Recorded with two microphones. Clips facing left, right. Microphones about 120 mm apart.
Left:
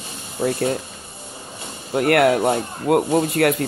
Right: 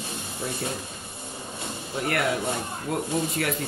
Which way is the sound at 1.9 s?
65° left (ahead or behind).